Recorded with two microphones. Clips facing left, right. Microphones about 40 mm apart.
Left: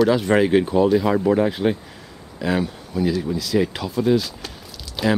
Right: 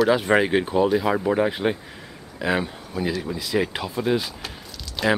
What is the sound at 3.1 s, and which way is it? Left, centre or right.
Speech, centre.